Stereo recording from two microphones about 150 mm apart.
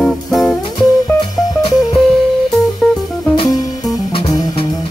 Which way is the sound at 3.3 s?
30° left (ahead or behind).